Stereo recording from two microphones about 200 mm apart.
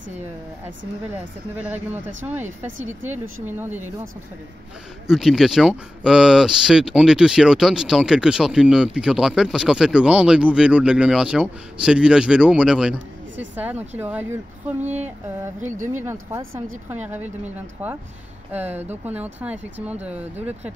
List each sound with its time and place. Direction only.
1.6 s speech: 10° right (ahead or behind)
5.0 s speech: centre (ahead or behind)
15.6 s speech: 35° right (ahead or behind)
16.0 s speech: 10° right (ahead or behind)